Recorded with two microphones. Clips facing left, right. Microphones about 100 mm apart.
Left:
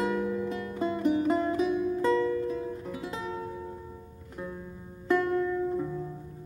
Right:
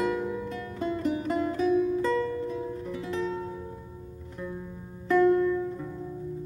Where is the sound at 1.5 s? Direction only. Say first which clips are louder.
Right 3 dB; 5° left (ahead or behind).